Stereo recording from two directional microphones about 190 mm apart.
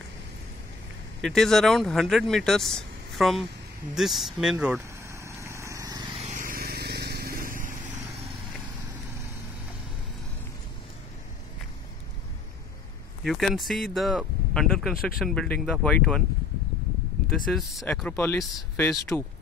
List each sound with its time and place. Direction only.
1.2 s speech: centre (ahead or behind)
3.9 s vehicle: centre (ahead or behind); by 6.2 s 20° right (ahead or behind)
6.2 s vehicle: 45° right (ahead or behind)
13.2 s speech: centre (ahead or behind)
17.5 s speech: centre (ahead or behind)